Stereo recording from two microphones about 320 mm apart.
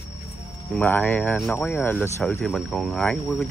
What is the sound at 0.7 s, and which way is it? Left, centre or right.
Speech, centre.